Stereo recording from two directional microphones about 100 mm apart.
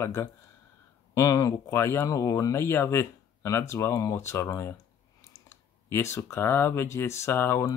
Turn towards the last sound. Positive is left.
turn(degrees=25)  # may be behind; listen again after turning